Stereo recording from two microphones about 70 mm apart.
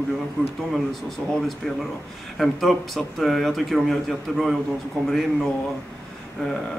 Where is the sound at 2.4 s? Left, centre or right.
Centre.